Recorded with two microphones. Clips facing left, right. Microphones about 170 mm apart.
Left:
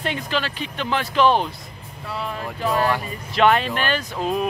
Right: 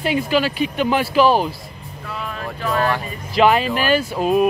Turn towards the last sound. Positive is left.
turn(degrees=-10)  # may be behind; listen again after turning